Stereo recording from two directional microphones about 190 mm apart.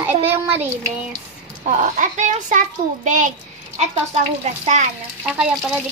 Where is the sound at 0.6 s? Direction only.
15° right (ahead or behind).